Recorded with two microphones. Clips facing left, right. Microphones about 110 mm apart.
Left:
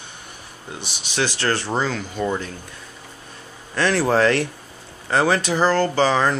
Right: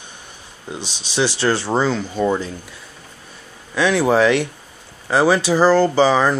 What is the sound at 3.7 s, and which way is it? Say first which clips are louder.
Speech: right 3 dB; 5° right (ahead or behind).